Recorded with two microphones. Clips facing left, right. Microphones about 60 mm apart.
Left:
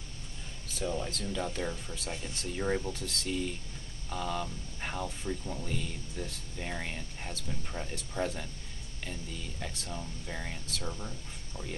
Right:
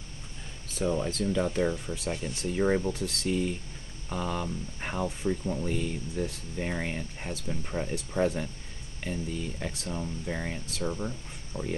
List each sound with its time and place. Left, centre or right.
0.7 s speech: right
1.0 s speech: right
9.6 s speech: right